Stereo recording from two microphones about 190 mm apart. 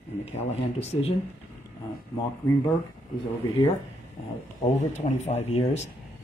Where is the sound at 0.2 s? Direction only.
30° left (ahead or behind).